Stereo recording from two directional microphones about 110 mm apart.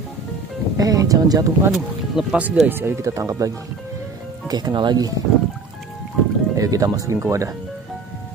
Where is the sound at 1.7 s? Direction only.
10° right (ahead or behind).